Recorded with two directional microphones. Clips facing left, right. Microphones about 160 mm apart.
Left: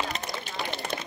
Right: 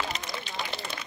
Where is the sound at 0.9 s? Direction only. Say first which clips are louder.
Left 6 dB; 50° left (ahead or behind).